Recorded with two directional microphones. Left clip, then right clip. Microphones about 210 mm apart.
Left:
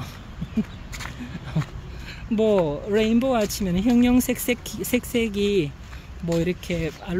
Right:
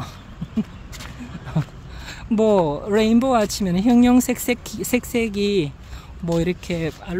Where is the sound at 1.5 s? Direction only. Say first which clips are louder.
Right 3 dB; 15° right (ahead or behind).